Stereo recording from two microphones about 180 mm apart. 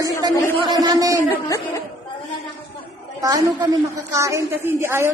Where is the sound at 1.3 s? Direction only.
15° left (ahead or behind).